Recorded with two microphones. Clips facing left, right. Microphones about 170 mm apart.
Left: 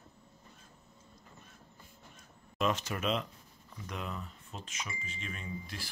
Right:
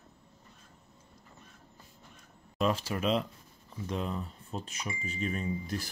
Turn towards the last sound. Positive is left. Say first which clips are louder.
# right 8 dB
turn(degrees=-40)  # may be behind; listen again after turning